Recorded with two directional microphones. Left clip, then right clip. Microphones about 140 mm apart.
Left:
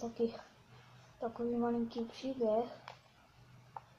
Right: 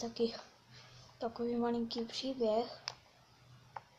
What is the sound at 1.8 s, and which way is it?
Speech, 5° right (ahead or behind).